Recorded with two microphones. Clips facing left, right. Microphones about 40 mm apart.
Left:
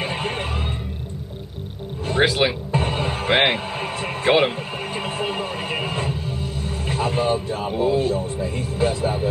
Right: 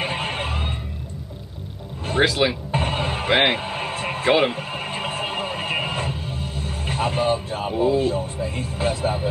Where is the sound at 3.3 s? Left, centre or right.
Centre.